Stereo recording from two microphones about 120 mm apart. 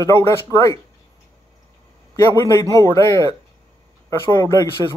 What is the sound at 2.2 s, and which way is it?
Speech, 25° left (ahead or behind).